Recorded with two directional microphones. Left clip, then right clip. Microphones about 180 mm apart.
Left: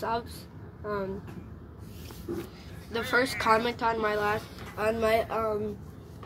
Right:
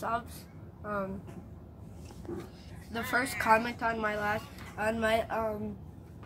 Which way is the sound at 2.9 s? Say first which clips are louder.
Left 4 dB; 15° left (ahead or behind).